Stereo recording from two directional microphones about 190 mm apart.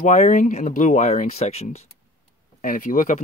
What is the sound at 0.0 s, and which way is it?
Speech, 40° left (ahead or behind).